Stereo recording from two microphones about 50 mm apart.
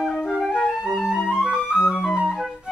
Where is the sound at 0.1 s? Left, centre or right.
Centre.